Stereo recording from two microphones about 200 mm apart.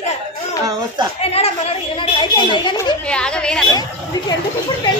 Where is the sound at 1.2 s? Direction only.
30° left (ahead or behind).